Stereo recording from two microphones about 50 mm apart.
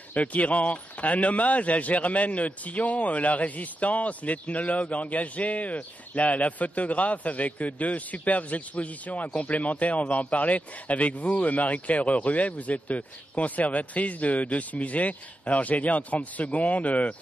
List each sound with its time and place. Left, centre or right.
0.1 s speech: left